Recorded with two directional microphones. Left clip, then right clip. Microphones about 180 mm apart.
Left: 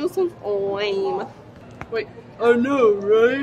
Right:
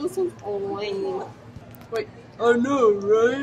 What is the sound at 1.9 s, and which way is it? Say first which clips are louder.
Speech: left 2 dB; centre (ahead or behind).